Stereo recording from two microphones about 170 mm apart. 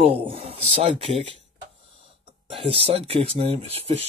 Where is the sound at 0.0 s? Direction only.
35° right (ahead or behind).